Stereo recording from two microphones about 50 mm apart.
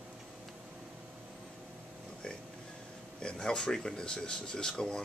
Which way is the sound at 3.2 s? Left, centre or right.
Centre.